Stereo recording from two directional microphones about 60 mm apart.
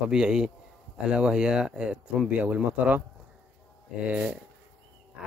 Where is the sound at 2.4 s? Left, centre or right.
Right.